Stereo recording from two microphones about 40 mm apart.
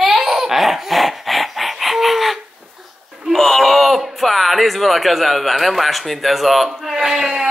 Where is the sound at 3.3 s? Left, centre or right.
Centre.